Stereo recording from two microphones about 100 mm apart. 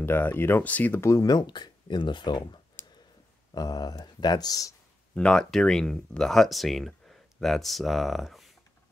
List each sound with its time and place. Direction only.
0.0 s speech: 20° left (ahead or behind)
1.0 s speech: 35° left (ahead or behind)
5.1 s speech: 10° left (ahead or behind)